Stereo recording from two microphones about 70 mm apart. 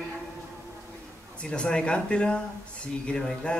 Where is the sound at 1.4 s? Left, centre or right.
Centre.